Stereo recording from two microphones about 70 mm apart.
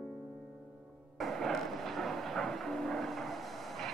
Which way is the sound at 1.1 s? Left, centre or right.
Centre.